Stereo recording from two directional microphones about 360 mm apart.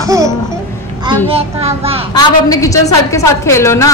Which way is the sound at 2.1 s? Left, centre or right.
Centre.